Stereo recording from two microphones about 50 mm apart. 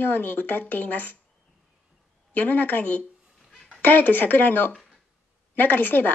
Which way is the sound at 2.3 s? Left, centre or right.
Left.